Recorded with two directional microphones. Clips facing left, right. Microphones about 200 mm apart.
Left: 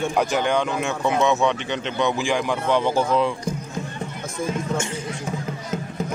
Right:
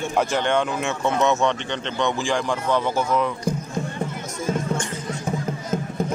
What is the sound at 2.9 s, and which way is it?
Speech, 30° left (ahead or behind).